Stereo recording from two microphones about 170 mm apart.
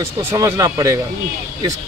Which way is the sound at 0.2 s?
15° right (ahead or behind).